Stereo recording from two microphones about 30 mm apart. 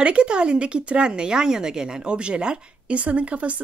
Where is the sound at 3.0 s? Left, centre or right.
Right.